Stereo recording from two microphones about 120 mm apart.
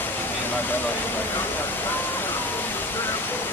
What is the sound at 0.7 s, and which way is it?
Speech, 15° left (ahead or behind).